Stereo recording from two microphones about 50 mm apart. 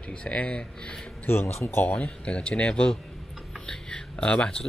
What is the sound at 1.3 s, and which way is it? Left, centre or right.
Speech, left.